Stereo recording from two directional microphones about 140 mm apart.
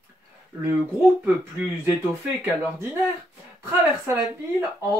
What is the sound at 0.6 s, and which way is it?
Speech, 15° right (ahead or behind).